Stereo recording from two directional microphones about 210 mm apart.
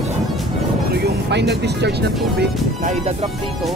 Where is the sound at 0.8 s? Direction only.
50° right (ahead or behind).